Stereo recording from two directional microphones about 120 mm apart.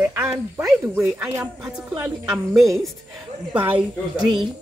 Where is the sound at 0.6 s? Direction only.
Centre (ahead or behind).